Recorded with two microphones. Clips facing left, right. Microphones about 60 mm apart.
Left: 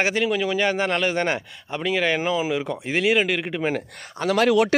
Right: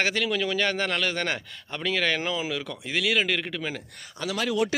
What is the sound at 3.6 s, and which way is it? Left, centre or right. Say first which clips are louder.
Speech: left 8 dB; left.